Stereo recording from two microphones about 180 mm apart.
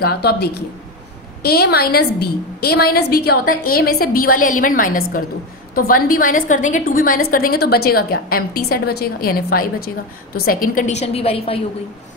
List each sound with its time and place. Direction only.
0.0 s a woman's voice: 60° left (ahead or behind); by 11.6 s 30° left (ahead or behind)